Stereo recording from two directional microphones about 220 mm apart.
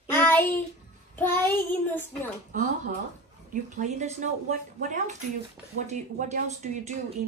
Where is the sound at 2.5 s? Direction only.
35° right (ahead or behind).